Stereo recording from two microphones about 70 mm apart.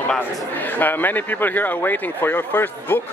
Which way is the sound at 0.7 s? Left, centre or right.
Left.